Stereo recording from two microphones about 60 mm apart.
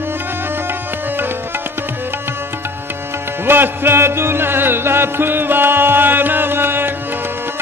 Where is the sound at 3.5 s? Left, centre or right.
Right.